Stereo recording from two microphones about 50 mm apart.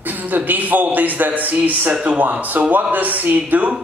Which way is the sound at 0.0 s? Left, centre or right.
Right.